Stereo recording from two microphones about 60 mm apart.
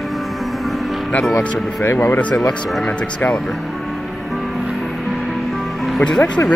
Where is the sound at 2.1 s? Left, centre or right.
Centre.